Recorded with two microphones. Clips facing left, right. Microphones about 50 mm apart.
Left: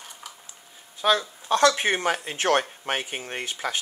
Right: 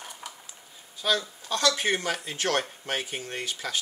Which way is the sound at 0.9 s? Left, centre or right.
Left.